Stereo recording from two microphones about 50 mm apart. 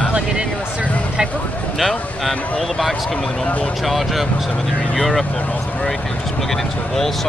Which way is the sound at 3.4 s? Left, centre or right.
Left.